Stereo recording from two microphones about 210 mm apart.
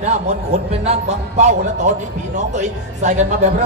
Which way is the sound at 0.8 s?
30° right (ahead or behind).